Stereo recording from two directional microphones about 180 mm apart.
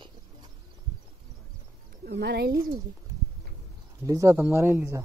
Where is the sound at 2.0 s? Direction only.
65° right (ahead or behind).